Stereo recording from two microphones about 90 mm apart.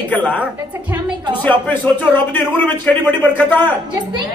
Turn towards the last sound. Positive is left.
turn(degrees=15)  # may be behind; listen again after turning